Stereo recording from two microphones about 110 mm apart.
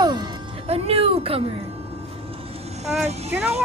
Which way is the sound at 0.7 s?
60° right (ahead or behind).